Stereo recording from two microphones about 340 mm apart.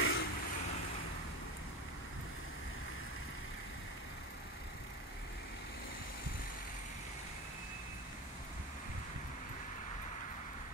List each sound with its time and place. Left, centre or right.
0.0 s vehicle: left